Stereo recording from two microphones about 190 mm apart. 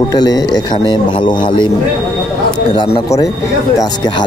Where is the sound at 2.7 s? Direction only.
30° left (ahead or behind).